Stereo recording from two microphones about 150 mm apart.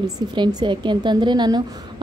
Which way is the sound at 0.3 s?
30° right (ahead or behind).